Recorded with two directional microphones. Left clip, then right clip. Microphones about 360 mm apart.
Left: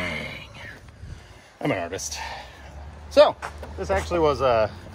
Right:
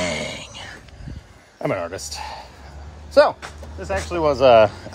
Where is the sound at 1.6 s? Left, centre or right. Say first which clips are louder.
Right 2 dB; centre.